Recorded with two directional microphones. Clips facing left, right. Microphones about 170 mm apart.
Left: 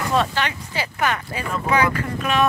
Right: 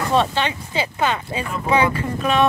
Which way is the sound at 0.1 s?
25° right (ahead or behind).